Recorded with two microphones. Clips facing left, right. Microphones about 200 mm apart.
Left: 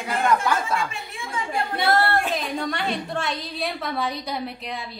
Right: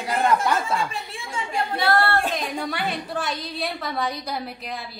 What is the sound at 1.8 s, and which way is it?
Singing, 20° left (ahead or behind).